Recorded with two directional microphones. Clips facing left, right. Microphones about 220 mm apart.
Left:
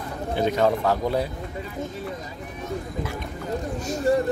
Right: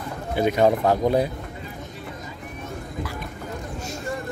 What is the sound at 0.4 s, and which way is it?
Speech, 15° right (ahead or behind).